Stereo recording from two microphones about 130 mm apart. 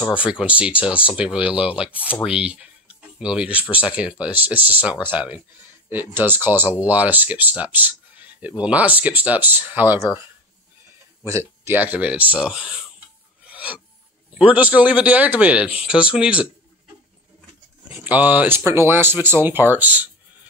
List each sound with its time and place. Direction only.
0.2 s speech: 10° right (ahead or behind)
11.2 s speech: 20° right (ahead or behind)
13.5 s filing: 10° right (ahead or behind)
14.4 s speech: 10° right (ahead or behind)
18.0 s speech: 15° right (ahead or behind)